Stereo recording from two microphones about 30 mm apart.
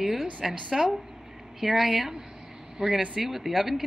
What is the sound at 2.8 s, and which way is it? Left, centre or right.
Speech, right.